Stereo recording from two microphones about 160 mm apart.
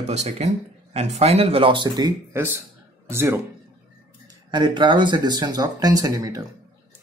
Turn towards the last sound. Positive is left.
turn(degrees=-20)  # may be behind; listen again after turning